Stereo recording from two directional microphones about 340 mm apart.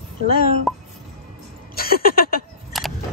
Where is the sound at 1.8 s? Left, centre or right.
Left.